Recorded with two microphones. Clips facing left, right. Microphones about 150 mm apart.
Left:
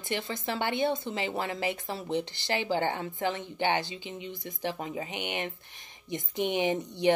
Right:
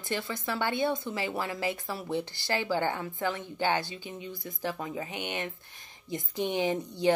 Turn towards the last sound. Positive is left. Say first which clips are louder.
# left 1 dB
turn(degrees=20)  # may be behind; listen again after turning